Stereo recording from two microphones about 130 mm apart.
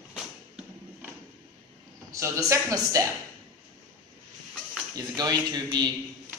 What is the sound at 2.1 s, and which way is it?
Speech, 20° right (ahead or behind).